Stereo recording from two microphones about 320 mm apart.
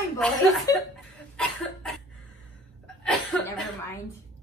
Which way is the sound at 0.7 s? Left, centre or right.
Centre.